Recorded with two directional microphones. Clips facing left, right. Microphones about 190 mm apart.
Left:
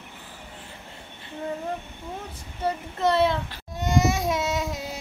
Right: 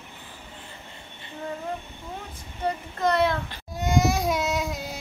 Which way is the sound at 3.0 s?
5° left (ahead or behind).